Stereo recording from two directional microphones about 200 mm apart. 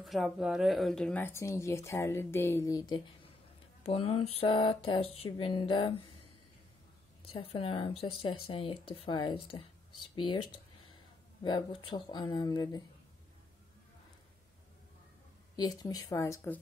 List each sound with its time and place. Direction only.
0.0 s speech: centre (ahead or behind); by 3.0 s 20° left (ahead or behind)
3.8 s speech: 30° left (ahead or behind)
7.2 s speech: 30° left (ahead or behind)
11.4 s speech: 20° left (ahead or behind)
15.5 s speech: 20° left (ahead or behind)